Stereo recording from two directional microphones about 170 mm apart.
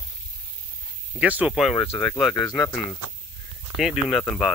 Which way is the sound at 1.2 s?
5° right (ahead or behind).